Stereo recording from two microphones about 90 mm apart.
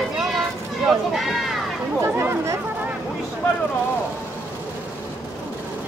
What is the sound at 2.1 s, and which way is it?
Speech, 35° right (ahead or behind).